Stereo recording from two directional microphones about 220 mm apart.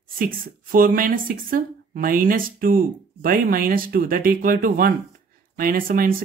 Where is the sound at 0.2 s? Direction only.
40° right (ahead or behind).